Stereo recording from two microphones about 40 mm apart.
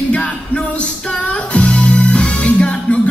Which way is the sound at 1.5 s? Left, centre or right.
Left.